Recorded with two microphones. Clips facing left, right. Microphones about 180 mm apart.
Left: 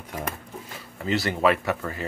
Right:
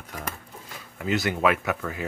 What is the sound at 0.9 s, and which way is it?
Speech, centre (ahead or behind).